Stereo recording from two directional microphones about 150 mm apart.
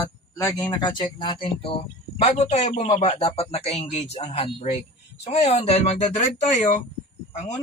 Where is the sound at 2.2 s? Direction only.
50° left (ahead or behind).